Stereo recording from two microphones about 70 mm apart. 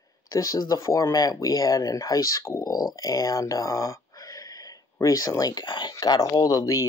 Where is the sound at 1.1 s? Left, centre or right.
Left.